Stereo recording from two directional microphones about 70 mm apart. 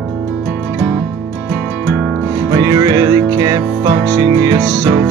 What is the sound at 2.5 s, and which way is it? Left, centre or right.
Music, right.